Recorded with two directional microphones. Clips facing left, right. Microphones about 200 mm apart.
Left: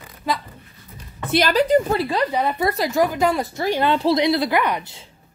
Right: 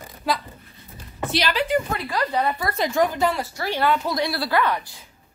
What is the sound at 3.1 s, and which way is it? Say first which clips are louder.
A woman's voice: left 3 dB; 20° left (ahead or behind).